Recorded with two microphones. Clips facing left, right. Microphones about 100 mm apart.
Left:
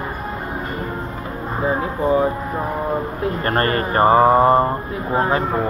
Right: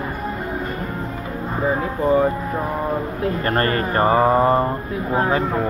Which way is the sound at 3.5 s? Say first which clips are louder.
Left 2 dB; 30° left (ahead or behind).